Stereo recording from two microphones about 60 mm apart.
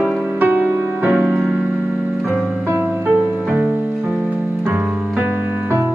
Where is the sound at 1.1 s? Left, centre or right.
Centre.